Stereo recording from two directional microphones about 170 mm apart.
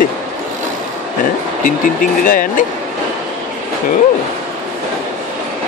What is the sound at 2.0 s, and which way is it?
Speech, 55° left (ahead or behind).